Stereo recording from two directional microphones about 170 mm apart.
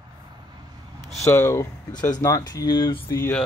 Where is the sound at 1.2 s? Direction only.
15° left (ahead or behind).